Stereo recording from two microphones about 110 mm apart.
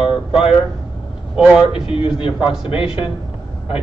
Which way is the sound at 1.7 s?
55° left (ahead or behind).